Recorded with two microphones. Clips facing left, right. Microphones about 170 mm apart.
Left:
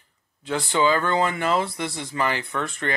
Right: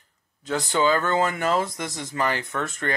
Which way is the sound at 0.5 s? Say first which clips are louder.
Even; 45° right (ahead or behind).